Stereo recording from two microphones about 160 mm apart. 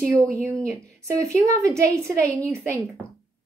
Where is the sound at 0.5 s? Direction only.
20° right (ahead or behind).